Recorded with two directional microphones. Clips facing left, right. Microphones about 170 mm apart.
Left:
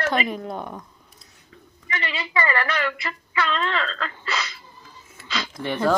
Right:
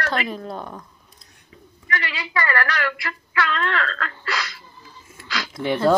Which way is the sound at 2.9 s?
20° left (ahead or behind).